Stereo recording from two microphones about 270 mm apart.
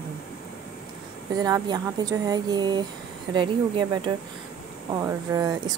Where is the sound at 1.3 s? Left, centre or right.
Centre.